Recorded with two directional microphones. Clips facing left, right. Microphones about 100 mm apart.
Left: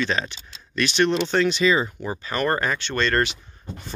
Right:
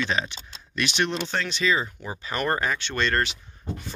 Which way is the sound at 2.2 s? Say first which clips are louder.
Left 2 dB; 10° right (ahead or behind).